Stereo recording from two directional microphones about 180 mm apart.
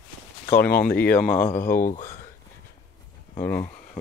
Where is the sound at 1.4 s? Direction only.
50° left (ahead or behind).